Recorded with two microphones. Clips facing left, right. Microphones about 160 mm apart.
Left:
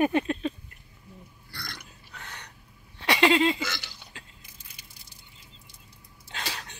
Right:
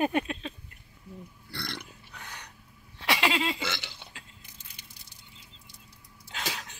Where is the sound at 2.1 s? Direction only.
10° right (ahead or behind).